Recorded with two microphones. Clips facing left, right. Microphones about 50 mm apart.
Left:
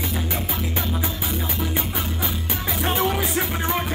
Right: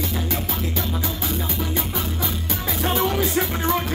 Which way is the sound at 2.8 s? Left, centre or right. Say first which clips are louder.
Right 1 dB; centre.